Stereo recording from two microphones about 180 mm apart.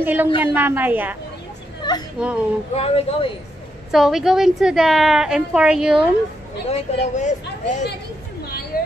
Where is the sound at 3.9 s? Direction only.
Centre (ahead or behind).